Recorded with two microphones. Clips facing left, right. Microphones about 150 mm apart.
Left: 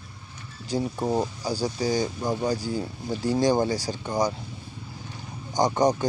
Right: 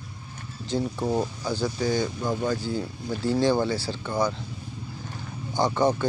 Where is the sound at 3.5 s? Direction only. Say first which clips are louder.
Left 1 dB; 40° left (ahead or behind).